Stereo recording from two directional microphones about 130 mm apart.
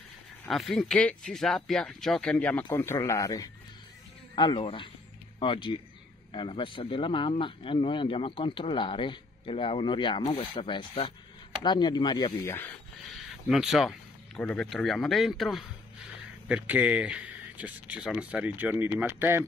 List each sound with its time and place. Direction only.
0.5 s speech: centre (ahead or behind)
2.7 s speech: 20° left (ahead or behind)
4.4 s speech: 40° left (ahead or behind)
12.4 s speech: 15° left (ahead or behind)
13.1 s a sound: centre (ahead or behind)
14.4 s speech: 10° left (ahead or behind)
16.4 s speech: 10° right (ahead or behind)